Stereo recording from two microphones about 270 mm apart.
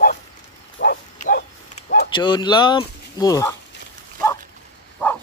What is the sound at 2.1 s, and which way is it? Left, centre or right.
Speech, centre.